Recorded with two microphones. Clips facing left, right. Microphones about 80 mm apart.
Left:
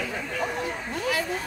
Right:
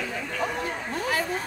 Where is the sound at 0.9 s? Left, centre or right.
Right.